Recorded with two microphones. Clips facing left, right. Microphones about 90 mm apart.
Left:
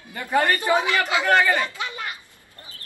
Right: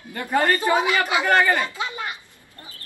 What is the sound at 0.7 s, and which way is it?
Speech, 20° right (ahead or behind).